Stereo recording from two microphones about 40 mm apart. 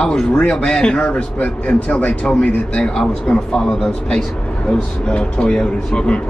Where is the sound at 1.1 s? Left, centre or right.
Left.